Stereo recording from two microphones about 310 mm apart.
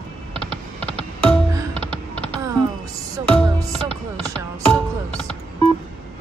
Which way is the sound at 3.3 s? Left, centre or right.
Centre.